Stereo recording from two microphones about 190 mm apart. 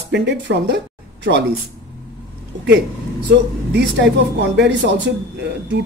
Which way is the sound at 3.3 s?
65° right (ahead or behind).